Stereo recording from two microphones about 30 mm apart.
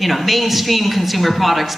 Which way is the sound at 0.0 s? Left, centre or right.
Centre.